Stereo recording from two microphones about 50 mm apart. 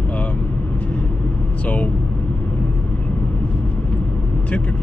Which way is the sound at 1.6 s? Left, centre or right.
Left.